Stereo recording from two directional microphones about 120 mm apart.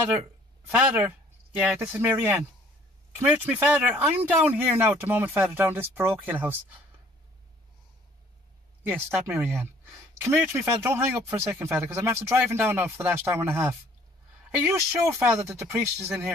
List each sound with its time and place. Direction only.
0.7 s speech: 15° right (ahead or behind)
8.8 s speech: 15° right (ahead or behind)